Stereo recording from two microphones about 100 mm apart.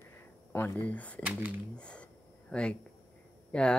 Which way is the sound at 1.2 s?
15° right (ahead or behind).